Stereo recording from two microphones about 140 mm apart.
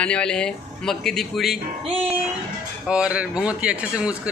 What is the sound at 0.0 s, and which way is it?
Speech, 5° left (ahead or behind).